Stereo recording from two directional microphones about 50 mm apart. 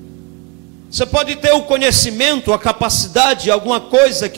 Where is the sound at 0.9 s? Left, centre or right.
Right.